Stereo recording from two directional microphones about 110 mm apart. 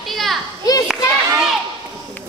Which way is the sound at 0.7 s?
35° left (ahead or behind).